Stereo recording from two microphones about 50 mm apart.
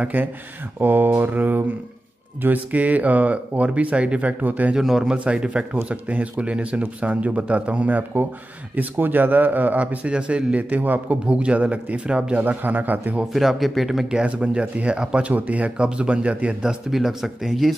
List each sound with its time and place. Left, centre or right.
0.0 s speech: right
4.7 s a man's voice: centre
5.1 s speech: right
8.7 s speech: right
11.2 s speech: right
12.4 s speech: right
13.3 s speech: centre
14.1 s speech: right
16.6 s speech: centre